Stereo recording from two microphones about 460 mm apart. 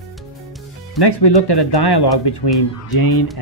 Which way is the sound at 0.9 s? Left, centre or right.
Left.